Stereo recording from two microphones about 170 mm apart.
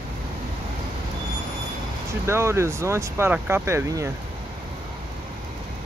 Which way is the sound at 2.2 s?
15° right (ahead or behind).